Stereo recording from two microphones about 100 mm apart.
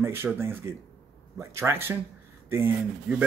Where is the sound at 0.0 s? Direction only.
25° right (ahead or behind).